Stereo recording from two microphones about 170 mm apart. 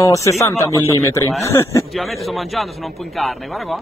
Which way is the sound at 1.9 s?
Centre (ahead or behind).